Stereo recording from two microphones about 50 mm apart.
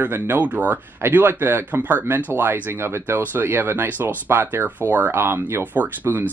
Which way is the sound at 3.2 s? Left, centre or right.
Right.